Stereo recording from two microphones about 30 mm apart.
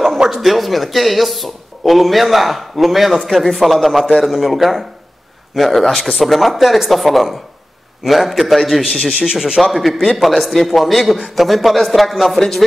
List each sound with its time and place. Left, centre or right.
0.4 s speech: centre
8.8 s speech: centre
9.6 s speech: centre
12.4 s speech: centre